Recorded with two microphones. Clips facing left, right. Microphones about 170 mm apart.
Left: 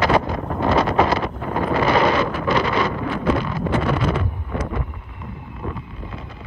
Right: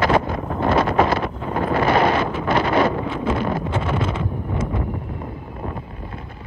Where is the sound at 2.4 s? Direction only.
50° right (ahead or behind).